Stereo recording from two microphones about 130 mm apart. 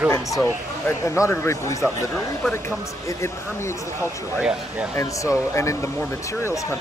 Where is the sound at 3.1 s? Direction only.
20° left (ahead or behind).